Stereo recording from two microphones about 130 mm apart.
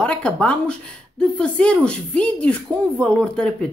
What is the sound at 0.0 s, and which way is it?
Speech, 10° left (ahead or behind).